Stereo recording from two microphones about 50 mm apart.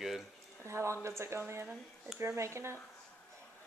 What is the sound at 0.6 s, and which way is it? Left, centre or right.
Speech, right.